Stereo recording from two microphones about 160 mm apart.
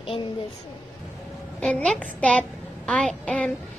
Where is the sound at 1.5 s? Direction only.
5° left (ahead or behind).